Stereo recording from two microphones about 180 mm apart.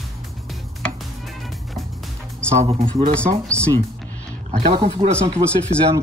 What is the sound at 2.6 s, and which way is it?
Speech, 35° right (ahead or behind).